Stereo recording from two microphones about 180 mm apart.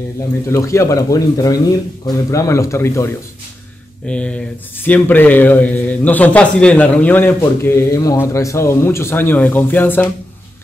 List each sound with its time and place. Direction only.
0.5 s a man's voice: 15° left (ahead or behind)
4.1 s a man's voice: 5° left (ahead or behind)